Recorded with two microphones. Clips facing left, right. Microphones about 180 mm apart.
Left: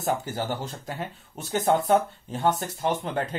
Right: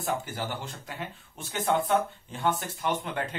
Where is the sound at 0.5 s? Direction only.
40° left (ahead or behind).